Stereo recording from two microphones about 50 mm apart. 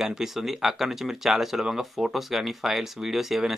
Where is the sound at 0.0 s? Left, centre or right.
Centre.